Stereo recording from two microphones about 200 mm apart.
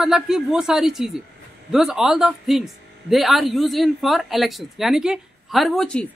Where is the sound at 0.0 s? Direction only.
Centre (ahead or behind).